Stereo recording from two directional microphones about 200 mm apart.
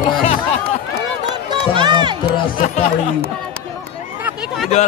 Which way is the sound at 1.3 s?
20° right (ahead or behind).